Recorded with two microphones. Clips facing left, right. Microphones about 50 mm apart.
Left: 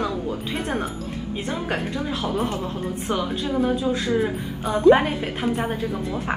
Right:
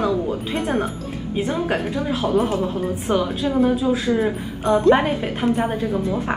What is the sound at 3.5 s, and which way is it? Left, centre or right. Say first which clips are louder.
Speech: right 4 dB; right.